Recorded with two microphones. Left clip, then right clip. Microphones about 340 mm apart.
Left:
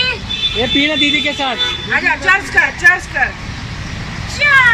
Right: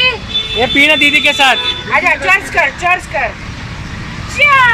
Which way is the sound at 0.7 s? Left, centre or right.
Right.